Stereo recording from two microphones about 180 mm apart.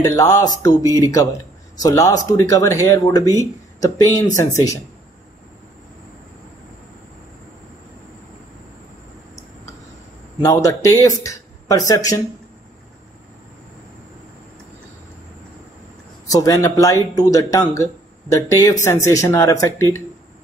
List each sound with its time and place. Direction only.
0.0 s speech: 20° left (ahead or behind)
4.4 s speech: 15° left (ahead or behind)
10.4 s a man's voice: 20° left (ahead or behind)
16.3 s speech: 20° left (ahead or behind)